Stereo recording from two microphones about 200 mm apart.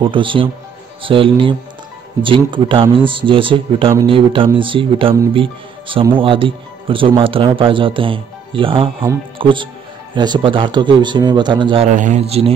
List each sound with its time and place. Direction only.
0.0 s speech: 25° right (ahead or behind)
11.9 s a man's voice: 40° right (ahead or behind)